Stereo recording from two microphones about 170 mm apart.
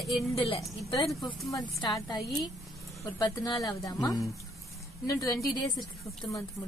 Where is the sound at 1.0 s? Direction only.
Centre (ahead or behind).